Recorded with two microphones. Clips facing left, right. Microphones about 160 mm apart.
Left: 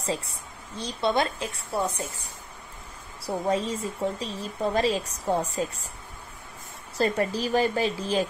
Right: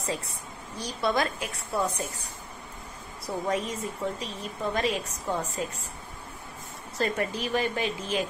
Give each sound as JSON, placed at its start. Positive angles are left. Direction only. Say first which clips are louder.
{"t": 0.0, "sound": "a woman's voice", "louder": "left 2 dB", "side_deg": 30}
{"t": 3.3, "sound": "a woman's voice", "louder": "left 3 dB", "side_deg": 30}
{"t": 7.0, "sound": "a woman's voice", "louder": "left 4 dB", "side_deg": 35}